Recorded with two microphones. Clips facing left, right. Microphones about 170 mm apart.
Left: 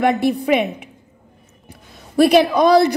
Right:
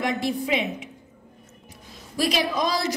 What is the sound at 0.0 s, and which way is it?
A woman's voice, 60° left (ahead or behind).